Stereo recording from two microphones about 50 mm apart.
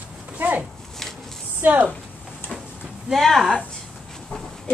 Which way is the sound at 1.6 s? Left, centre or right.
Right.